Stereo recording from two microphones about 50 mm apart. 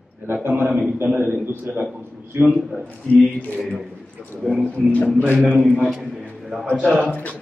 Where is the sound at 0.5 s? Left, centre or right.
Right.